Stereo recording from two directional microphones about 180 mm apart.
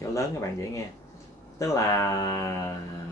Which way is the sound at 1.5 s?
20° left (ahead or behind).